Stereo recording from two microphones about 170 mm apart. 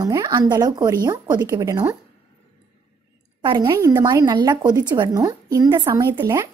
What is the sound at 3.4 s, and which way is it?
A woman's voice, 25° right (ahead or behind).